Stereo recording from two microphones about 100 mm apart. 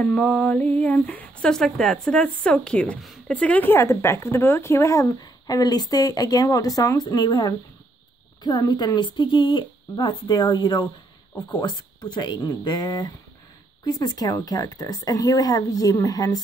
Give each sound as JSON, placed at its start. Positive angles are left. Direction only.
{"t": 0.0, "sound": "speech", "side_deg": 10}
{"t": 3.7, "sound": "speech", "side_deg": 30}